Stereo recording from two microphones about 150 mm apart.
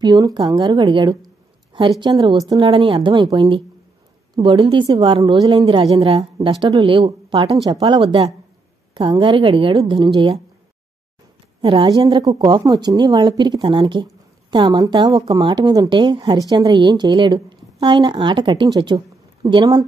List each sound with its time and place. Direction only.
0.0 s a woman's voice: 30° right (ahead or behind)
2.7 s a woman's voice: 35° right (ahead or behind)
11.6 s a woman's voice: 35° right (ahead or behind)